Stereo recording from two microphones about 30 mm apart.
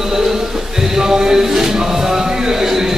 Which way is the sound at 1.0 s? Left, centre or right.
Centre.